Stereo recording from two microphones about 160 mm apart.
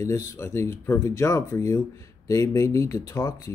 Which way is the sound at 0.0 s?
20° left (ahead or behind).